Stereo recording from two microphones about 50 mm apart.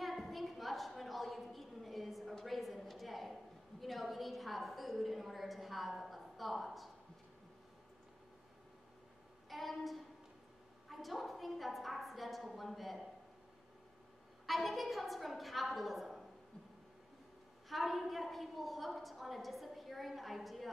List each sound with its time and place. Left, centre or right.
0.0 s a sound: centre
3.8 s a woman's voice: centre
9.5 s a woman's voice: centre
14.4 s a woman's voice: centre
17.6 s a woman's voice: centre